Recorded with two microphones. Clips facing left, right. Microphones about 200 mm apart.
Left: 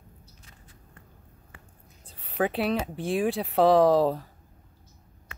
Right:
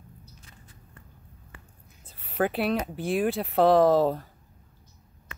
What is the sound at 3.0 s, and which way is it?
Speech, centre (ahead or behind).